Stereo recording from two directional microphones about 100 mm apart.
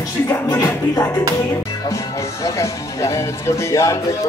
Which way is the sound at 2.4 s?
30° left (ahead or behind).